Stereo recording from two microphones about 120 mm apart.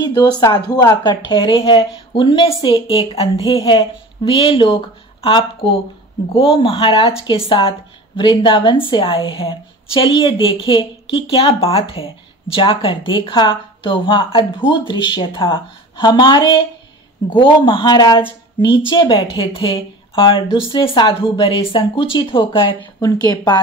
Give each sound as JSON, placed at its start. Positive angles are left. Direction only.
{"t": 0.0, "sound": "a woman's voice", "side_deg": 35}
{"t": 23.0, "sound": "speech", "side_deg": 35}